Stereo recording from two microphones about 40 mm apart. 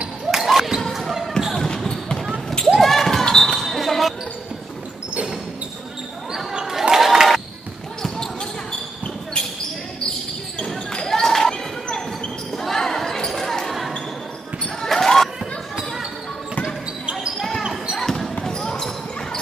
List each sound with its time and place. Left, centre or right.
0.3 s basketball bounce: centre
1.5 s basketball bounce: centre
2.6 s basketball bounce: centre
6.6 s a sound: centre
11.1 s basketball bounce: centre
18.0 s basketball bounce: centre